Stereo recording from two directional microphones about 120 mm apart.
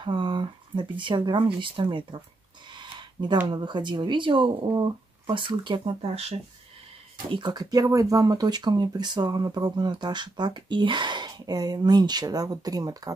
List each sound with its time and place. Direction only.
0.0 s speech: 40° right (ahead or behind)
2.7 s a sound: 40° right (ahead or behind)
3.4 s speech: 40° right (ahead or behind); by 6.3 s 55° right (ahead or behind)
7.2 s speech: 40° right (ahead or behind)